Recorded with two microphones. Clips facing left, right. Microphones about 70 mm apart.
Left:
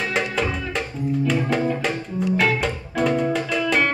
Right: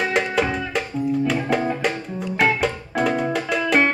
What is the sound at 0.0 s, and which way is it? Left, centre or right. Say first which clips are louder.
Music: right 3 dB; centre.